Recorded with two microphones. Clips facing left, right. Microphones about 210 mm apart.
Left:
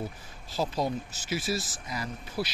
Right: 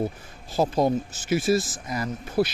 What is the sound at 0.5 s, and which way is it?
Speech, 50° right (ahead or behind).